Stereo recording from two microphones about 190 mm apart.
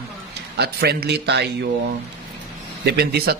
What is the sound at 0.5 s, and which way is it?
Speech, 60° right (ahead or behind).